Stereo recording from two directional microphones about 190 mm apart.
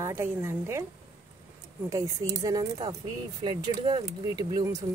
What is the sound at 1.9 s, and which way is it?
Speech, 20° right (ahead or behind).